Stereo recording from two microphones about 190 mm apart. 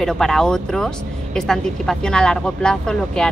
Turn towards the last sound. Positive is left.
turn(degrees=5)  # may be behind; listen again after turning